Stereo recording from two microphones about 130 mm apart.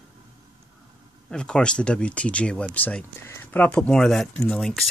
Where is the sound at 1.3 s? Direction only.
5° left (ahead or behind).